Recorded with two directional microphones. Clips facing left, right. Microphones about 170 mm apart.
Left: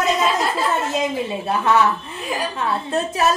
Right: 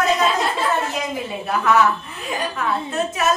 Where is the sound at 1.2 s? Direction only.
25° left (ahead or behind).